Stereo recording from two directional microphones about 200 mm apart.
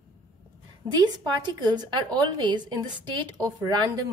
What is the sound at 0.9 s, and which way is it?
Speech, 20° right (ahead or behind).